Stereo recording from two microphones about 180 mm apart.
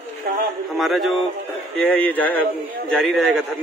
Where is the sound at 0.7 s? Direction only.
Centre (ahead or behind).